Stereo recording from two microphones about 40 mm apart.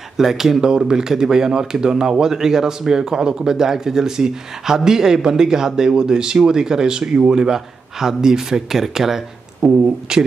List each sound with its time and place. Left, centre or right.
0.2 s speech: centre